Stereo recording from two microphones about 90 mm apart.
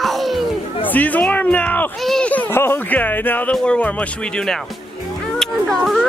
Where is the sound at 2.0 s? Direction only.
5° left (ahead or behind).